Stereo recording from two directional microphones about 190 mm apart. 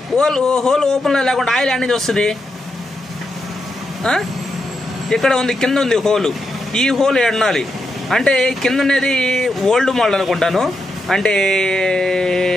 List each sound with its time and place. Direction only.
0.1 s speech: 5° left (ahead or behind)
4.0 s speech: 5° left (ahead or behind)